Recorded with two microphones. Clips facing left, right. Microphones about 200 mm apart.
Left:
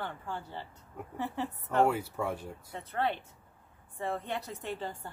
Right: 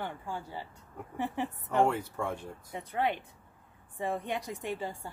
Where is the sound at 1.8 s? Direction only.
5° left (ahead or behind).